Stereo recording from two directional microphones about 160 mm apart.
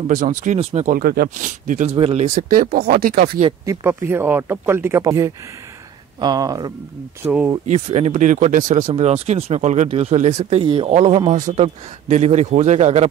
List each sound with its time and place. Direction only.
0.1 s speech: 55° right (ahead or behind)
0.6 s speech: 40° right (ahead or behind)
0.9 s speech: 70° right (ahead or behind); by 2.0 s 50° right (ahead or behind)
2.0 s speech: 40° right (ahead or behind); by 3.3 s 65° right (ahead or behind)
3.6 s speech: 15° right (ahead or behind)
7.6 s speech: 45° right (ahead or behind)
8.9 s speech: 40° right (ahead or behind)
11.3 s speech: 50° right (ahead or behind)
11.6 s speech: 40° right (ahead or behind)